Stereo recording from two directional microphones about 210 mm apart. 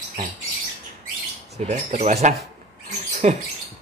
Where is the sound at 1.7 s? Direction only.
35° right (ahead or behind).